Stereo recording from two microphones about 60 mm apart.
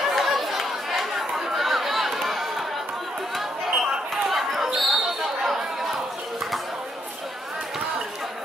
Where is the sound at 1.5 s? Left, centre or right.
Centre.